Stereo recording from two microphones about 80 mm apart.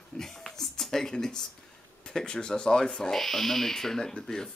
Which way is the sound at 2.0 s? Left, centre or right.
Centre.